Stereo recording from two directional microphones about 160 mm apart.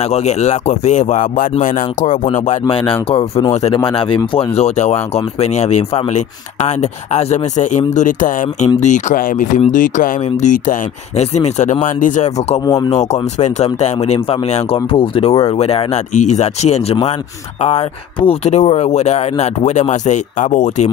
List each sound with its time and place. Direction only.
0.0 s speech: 45° left (ahead or behind)
2.7 s speech: 35° left (ahead or behind); by 12.3 s 50° left (ahead or behind)
12.6 s speech: 20° left (ahead or behind)
13.1 s speech: 45° left (ahead or behind)